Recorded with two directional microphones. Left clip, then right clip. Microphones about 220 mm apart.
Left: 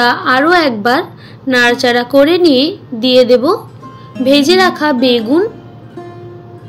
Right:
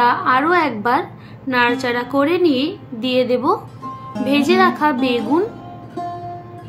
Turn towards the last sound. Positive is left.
turn(degrees=10)  # may be behind; listen again after turning